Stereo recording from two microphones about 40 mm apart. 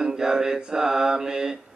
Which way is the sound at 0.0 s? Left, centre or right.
Centre.